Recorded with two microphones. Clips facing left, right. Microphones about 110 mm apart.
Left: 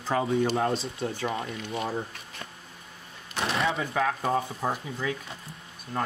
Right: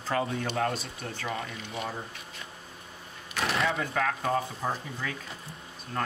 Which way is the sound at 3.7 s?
10° left (ahead or behind).